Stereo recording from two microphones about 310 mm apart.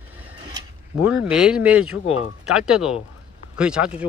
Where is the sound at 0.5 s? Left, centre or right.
Centre.